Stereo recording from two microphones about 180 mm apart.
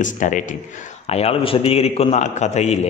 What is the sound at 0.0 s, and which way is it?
A man's voice, 45° left (ahead or behind).